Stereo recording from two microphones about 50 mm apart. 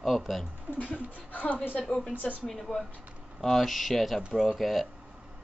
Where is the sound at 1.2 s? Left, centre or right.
Left.